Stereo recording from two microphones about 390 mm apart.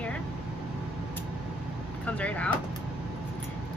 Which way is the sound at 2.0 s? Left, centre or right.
Centre.